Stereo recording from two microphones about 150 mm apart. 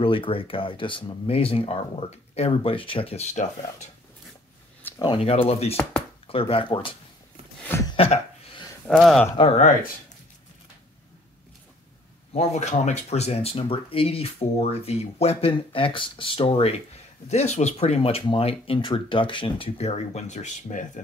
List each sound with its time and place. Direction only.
0.0 s speech: 35° left (ahead or behind)
5.0 s speech: 40° left (ahead or behind)
7.6 s a sound: 15° left (ahead or behind)
7.9 s a sound: 40° left (ahead or behind)
8.9 s speech: centre (ahead or behind)
12.3 s speech: 50° left (ahead or behind)